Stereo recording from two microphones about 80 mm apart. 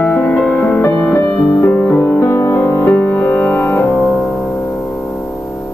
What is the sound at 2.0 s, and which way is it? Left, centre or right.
Music, left.